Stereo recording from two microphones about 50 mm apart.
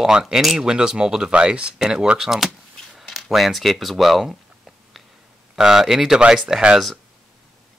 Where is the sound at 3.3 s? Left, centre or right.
Centre.